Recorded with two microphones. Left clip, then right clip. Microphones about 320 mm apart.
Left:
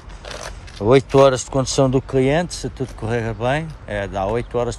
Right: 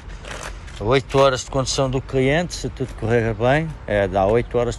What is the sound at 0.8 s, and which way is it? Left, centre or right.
Speech, left.